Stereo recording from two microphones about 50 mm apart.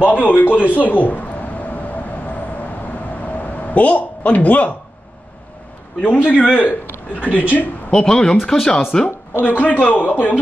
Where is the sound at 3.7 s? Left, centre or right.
Left.